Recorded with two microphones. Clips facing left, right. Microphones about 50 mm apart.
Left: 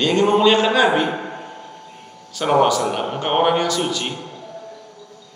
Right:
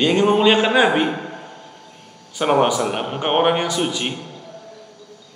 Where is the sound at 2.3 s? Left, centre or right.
Centre.